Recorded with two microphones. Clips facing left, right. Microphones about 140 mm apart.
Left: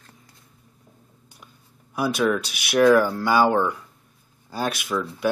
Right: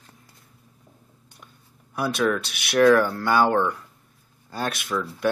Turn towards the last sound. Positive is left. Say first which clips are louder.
# left 1 dB
turn(degrees=5)  # may be behind; listen again after turning